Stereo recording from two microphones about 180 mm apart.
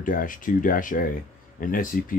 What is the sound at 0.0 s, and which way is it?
Speech, 50° left (ahead or behind).